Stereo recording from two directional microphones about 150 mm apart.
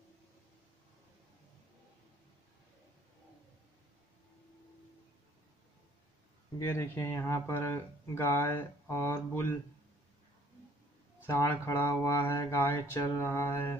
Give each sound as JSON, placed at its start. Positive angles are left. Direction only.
{"t": 6.6, "sound": "speech", "side_deg": 15}
{"t": 11.2, "sound": "speech", "side_deg": 15}